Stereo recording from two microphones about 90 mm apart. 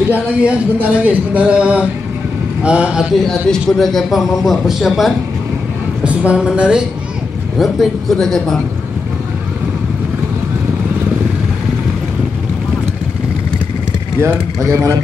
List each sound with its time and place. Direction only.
0.1 s speech: 15° right (ahead or behind)
3.2 s a man's voice: 5° left (ahead or behind)
7.5 s a man's voice: centre (ahead or behind)
14.2 s speech: 30° right (ahead or behind)